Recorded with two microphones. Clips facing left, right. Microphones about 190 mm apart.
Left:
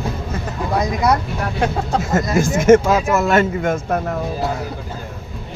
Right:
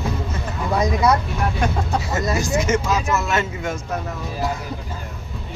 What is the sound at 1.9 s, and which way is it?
Speech, 50° left (ahead or behind).